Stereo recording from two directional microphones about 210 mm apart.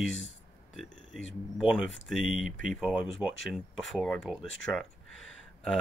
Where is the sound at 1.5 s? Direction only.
Centre (ahead or behind).